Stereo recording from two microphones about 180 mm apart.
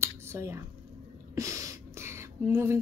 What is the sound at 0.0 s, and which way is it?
Finger snapping, 15° right (ahead or behind).